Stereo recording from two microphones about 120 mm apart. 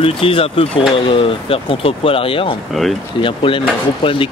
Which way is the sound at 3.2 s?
45° left (ahead or behind).